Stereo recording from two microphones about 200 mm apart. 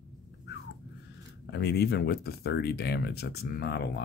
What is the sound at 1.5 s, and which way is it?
Speech, 55° left (ahead or behind).